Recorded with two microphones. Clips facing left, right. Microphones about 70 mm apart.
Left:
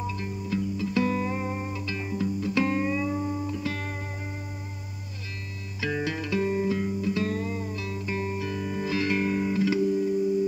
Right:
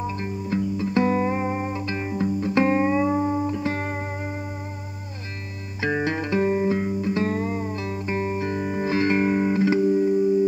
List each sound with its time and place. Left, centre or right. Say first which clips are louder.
0.0 s music: right 4 dB; right
5.8 s music: right 5 dB; right